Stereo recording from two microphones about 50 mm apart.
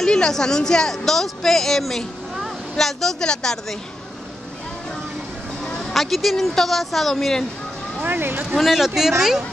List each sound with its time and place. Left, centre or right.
0.0 s speech: centre
5.9 s speech: centre
8.0 s speech: right
8.5 s speech: centre